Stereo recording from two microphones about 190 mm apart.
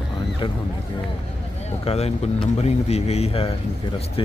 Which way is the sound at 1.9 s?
30° left (ahead or behind).